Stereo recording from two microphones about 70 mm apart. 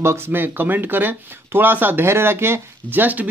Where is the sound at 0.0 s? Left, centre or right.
Right.